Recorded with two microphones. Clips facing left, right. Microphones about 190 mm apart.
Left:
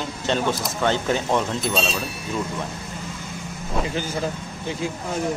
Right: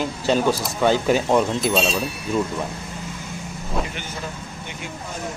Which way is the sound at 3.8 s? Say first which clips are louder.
Left 6 dB; 35° left (ahead or behind).